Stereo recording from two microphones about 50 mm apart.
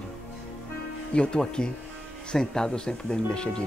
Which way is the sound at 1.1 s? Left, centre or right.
Centre.